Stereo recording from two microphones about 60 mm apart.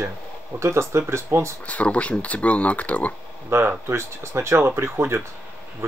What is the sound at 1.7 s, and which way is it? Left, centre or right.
Speech, left.